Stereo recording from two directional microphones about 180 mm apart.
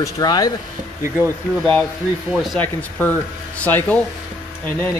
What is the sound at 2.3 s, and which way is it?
Speech, centre (ahead or behind).